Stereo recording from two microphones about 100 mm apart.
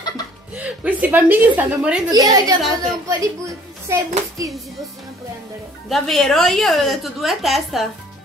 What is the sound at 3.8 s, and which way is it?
Speech, 35° right (ahead or behind).